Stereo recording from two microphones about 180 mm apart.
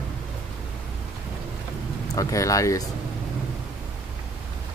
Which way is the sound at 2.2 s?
20° left (ahead or behind).